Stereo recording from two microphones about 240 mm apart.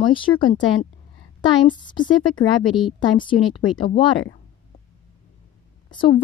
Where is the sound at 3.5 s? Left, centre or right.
Left.